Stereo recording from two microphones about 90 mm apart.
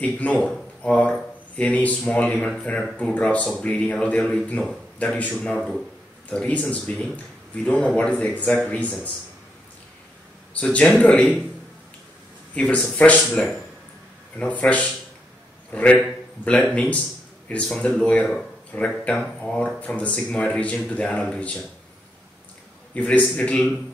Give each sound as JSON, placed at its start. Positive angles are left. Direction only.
{"t": 0.0, "sound": "speech", "side_deg": 15}
{"t": 10.5, "sound": "speech", "side_deg": 15}
{"t": 12.8, "sound": "speech", "side_deg": 15}
{"t": 22.9, "sound": "speech", "side_deg": 15}